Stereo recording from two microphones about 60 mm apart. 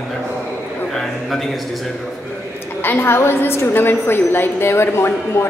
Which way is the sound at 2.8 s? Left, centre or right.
Left.